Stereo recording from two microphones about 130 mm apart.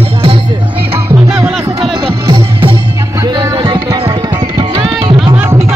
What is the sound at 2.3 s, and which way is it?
Music, 45° right (ahead or behind).